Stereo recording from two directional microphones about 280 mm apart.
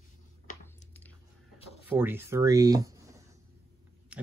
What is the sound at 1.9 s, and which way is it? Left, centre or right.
Speech, centre.